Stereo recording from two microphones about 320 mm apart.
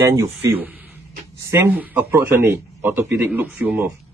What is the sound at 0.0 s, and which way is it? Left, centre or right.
Speech, centre.